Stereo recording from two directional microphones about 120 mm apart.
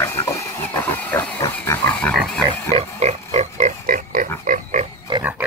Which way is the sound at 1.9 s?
10° left (ahead or behind).